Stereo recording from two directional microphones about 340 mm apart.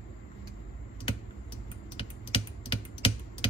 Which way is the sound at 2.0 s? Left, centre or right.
Centre.